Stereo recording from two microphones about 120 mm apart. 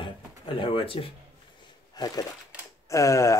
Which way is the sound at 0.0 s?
45° left (ahead or behind).